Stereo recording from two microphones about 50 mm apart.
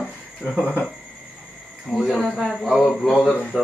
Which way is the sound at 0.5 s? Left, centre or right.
Left.